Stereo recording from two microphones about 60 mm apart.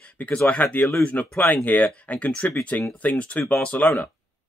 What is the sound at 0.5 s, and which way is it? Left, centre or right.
Speech, left.